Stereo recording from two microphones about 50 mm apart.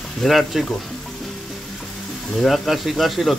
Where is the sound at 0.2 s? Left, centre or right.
Centre.